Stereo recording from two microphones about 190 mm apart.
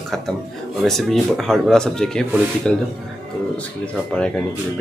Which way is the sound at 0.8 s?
Centre (ahead or behind).